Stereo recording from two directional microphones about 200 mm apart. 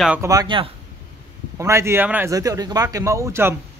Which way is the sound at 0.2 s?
20° right (ahead or behind).